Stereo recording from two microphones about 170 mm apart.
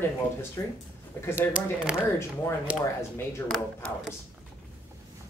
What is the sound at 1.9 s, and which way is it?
Speech, 5° right (ahead or behind).